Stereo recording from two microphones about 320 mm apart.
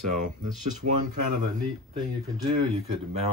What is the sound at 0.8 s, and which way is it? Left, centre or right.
Speech, right.